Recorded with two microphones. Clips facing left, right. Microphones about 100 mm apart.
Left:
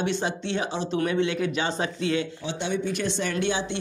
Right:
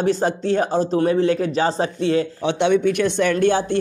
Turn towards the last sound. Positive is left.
turn(degrees=-50)  # may be behind; listen again after turning